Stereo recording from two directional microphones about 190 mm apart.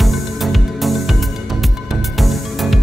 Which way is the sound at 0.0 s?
Centre (ahead or behind).